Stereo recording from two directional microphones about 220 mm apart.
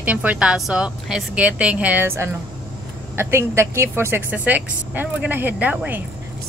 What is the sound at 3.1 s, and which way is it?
Male singing, 10° right (ahead or behind).